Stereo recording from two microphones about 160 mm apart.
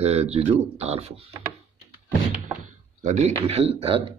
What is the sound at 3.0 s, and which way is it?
Speech, 45° right (ahead or behind).